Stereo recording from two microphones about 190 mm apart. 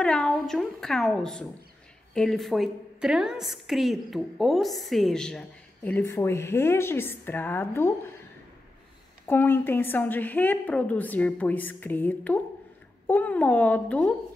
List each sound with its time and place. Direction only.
0.0 s a woman's voice: 5° left (ahead or behind)
9.3 s a woman's voice: 10° left (ahead or behind)